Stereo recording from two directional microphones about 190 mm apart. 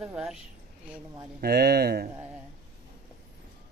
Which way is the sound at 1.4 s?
55° right (ahead or behind).